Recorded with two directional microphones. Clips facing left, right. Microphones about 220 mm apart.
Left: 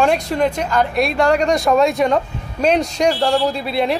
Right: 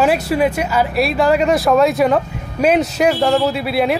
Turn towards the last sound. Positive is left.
turn(degrees=-5)  # may be behind; listen again after turning